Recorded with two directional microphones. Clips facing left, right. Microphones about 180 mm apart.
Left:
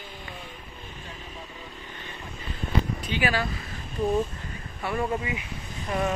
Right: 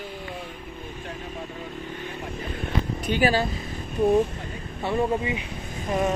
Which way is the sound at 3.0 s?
45° right (ahead or behind).